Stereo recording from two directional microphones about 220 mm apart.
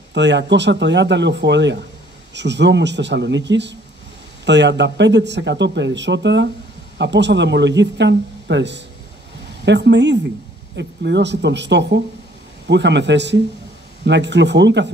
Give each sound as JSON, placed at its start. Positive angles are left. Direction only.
{"t": 0.1, "sound": "speech", "side_deg": -55}